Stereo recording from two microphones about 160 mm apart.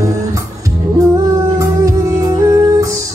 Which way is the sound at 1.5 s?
20° right (ahead or behind).